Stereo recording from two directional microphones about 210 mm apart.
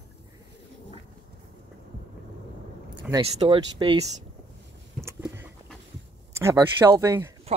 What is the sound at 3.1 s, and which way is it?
Speech, 25° right (ahead or behind).